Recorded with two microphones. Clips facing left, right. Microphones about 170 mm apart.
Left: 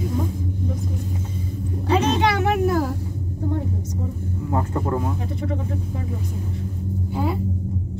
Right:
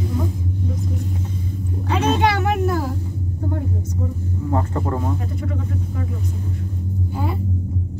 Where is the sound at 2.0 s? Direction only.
50° right (ahead or behind).